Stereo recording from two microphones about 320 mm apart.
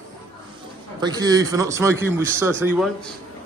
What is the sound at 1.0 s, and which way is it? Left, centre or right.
Speech, centre.